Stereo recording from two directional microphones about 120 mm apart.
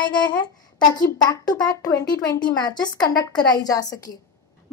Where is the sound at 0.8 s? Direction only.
35° left (ahead or behind).